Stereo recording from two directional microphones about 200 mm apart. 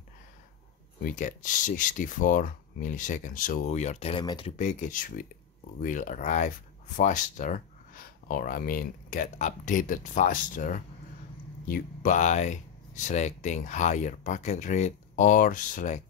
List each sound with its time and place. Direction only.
1.0 s speech: 40° left (ahead or behind); by 4.6 s 20° left (ahead or behind)
4.6 s speech: 40° left (ahead or behind)